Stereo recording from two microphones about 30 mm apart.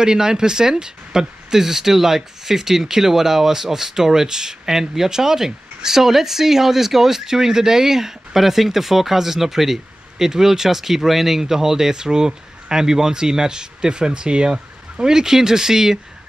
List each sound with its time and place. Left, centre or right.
0.0 s speech: right